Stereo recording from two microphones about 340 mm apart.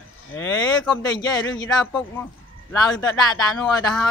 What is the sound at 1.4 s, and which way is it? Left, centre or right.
Speech, left.